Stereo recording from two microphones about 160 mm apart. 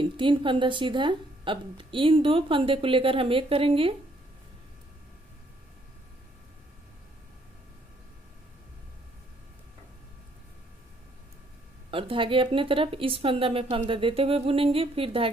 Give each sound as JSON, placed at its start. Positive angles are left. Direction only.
{"t": 0.0, "sound": "a woman's voice", "side_deg": -30}
{"t": 11.9, "sound": "a woman's voice", "side_deg": -35}